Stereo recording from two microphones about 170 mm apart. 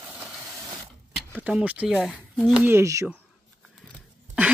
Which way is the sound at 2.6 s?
15° right (ahead or behind).